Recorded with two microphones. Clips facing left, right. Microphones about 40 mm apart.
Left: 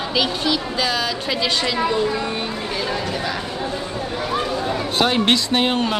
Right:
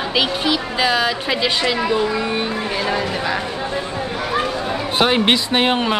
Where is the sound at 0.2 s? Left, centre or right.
Centre.